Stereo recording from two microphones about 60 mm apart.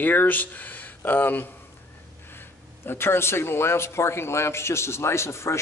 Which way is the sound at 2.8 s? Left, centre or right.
Left.